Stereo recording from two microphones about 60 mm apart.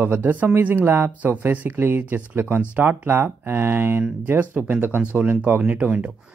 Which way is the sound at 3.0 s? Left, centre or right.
Right.